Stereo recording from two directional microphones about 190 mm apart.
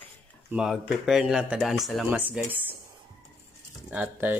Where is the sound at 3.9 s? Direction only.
10° right (ahead or behind).